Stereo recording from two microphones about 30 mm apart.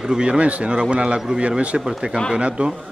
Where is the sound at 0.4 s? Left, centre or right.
Right.